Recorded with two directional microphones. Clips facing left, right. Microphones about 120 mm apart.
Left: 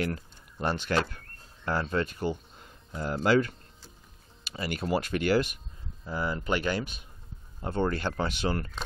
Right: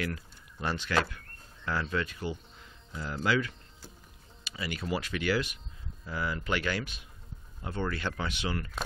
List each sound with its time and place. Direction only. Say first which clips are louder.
0.0 s speech: left 4 dB; 40° left (ahead or behind)
6.0 s speech: left 3 dB; 35° left (ahead or behind)